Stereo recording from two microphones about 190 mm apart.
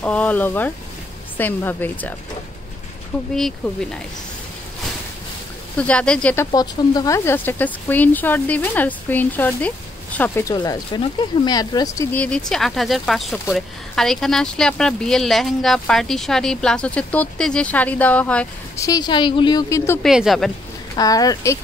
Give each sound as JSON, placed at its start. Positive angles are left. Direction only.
{"t": 0.0, "sound": "speech", "side_deg": 5}
{"t": 5.8, "sound": "speech", "side_deg": 5}
{"t": 6.5, "sound": "speech", "side_deg": 20}
{"t": 18.9, "sound": "a woman's voice", "side_deg": 20}
{"t": 20.0, "sound": "speech", "side_deg": 0}
{"t": 20.9, "sound": "a woman's voice", "side_deg": 20}